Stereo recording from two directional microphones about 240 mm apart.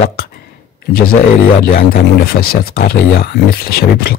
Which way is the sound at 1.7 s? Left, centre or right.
Left.